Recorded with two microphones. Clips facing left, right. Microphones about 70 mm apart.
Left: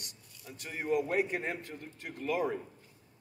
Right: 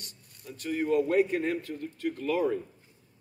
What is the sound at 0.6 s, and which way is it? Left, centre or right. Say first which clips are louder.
A man's voice: right 5 dB; centre.